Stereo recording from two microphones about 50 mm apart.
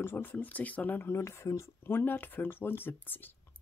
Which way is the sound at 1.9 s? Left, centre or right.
Left.